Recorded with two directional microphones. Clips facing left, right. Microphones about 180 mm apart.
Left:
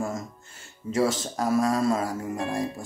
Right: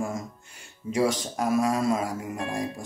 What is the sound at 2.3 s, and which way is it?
Speech, 35° left (ahead or behind).